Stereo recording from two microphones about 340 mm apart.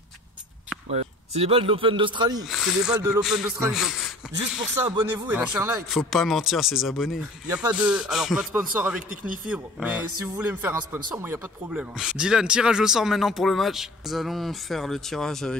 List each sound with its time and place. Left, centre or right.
0.8 s speech: centre
2.4 s speech: centre
9.1 s a man's voice: right
9.5 s speech: centre